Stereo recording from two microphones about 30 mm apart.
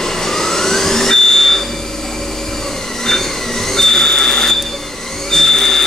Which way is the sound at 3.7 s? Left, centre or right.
Centre.